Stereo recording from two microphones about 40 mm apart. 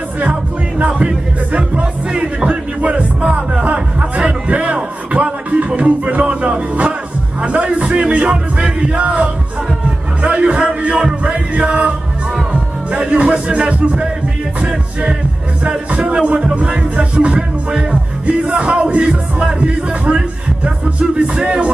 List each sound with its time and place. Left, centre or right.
0.2 s music: right
3.6 s a sound: right
7.4 s music: right
10.7 s speech: right
11.0 s music: right
12.9 s music: right